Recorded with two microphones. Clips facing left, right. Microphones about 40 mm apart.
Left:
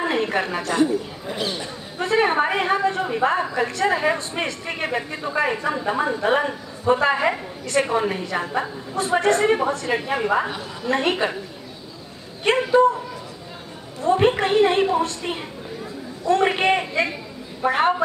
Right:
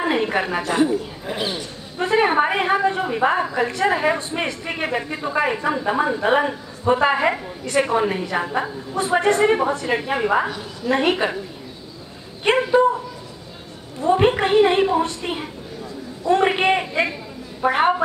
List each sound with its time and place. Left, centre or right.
0.0 s a sound: centre
0.6 s a woman's voice: centre
12.4 s a woman's voice: centre
14.0 s a woman's voice: centre